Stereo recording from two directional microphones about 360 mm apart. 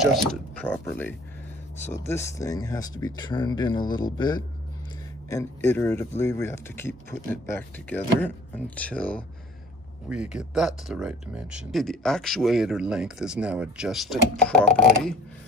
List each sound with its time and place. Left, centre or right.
0.0 s speech: centre